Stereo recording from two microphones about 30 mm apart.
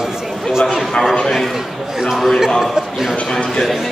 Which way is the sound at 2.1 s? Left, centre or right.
Centre.